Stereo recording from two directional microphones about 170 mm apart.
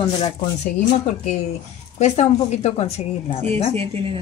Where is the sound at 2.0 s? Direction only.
40° left (ahead or behind).